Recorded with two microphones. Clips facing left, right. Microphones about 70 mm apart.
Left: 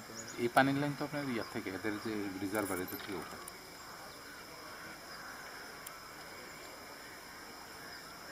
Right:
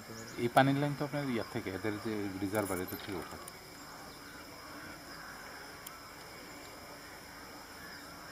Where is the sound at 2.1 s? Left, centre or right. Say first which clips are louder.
Right 2 dB; centre.